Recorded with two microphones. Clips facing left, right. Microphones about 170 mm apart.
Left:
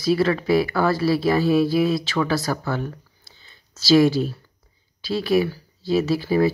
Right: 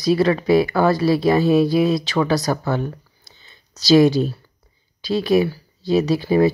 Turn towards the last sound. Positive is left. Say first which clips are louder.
# right 3 dB
turn(degrees=-20)  # may be behind; listen again after turning